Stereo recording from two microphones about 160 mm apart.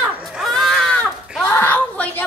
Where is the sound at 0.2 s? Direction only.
Centre (ahead or behind).